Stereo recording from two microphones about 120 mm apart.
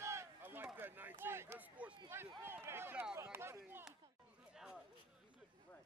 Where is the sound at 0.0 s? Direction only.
25° right (ahead or behind).